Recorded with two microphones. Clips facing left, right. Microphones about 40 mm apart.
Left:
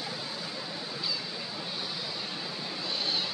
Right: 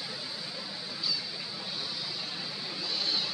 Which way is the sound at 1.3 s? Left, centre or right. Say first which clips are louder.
Left 2 dB; centre.